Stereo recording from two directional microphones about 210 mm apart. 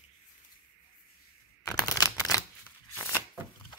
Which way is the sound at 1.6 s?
15° left (ahead or behind).